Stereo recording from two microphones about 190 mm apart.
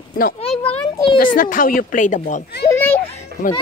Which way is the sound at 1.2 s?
45° left (ahead or behind).